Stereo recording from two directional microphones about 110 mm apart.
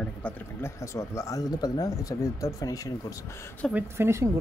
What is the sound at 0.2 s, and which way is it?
Speech, 25° left (ahead or behind).